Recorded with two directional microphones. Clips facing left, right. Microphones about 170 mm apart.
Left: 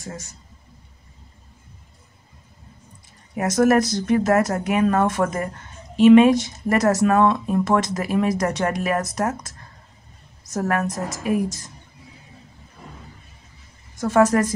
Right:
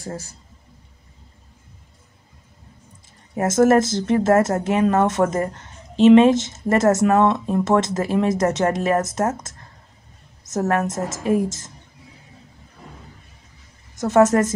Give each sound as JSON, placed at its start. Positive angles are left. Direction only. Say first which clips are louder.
{"t": 0.0, "sound": "a man's voice", "louder": "right 4 dB", "side_deg": -30}
{"t": 3.3, "sound": "speech", "louder": "right 2 dB", "side_deg": -25}
{"t": 13.9, "sound": "speech", "louder": "right 2 dB", "side_deg": -20}